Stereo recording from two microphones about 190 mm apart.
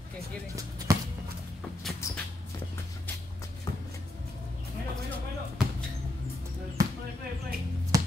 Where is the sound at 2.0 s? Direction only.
15° left (ahead or behind).